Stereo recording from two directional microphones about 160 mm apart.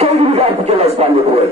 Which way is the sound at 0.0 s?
40° right (ahead or behind).